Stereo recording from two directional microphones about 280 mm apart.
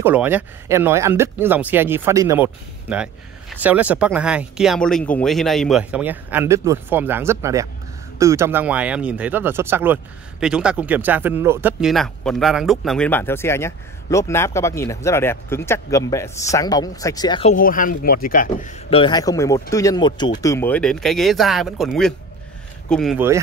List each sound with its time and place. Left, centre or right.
0.0 s speech: centre